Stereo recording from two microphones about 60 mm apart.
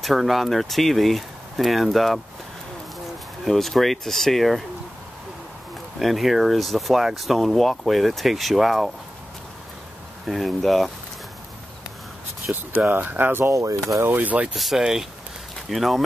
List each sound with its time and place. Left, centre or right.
0.0 s speech: centre
3.4 s speech: centre
5.9 s speech: centre
10.2 s speech: centre
12.7 s speech: right
13.5 s speech: right
14.0 s speech: right
14.5 s speech: centre